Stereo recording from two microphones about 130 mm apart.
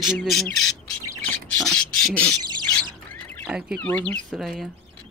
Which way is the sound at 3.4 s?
5° right (ahead or behind).